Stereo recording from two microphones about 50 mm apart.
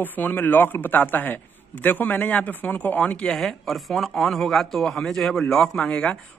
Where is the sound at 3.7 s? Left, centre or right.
Centre.